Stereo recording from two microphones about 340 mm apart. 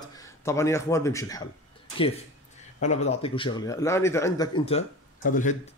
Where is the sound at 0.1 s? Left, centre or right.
Centre.